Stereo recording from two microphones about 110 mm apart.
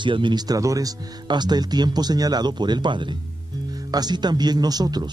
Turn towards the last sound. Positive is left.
turn(degrees=-40)  # may be behind; listen again after turning